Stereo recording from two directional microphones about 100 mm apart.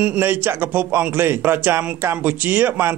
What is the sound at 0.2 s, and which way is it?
A man's voice, 20° right (ahead or behind).